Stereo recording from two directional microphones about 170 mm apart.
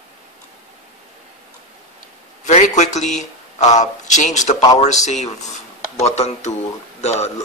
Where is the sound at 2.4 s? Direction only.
45° left (ahead or behind).